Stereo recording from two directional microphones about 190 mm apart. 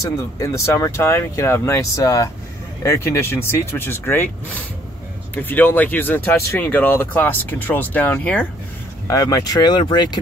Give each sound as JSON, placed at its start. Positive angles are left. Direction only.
{"t": 0.4, "sound": "speech", "side_deg": 15}
{"t": 9.0, "sound": "speech", "side_deg": 20}